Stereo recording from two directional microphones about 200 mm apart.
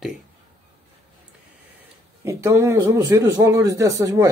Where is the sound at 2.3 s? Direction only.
15° right (ahead or behind).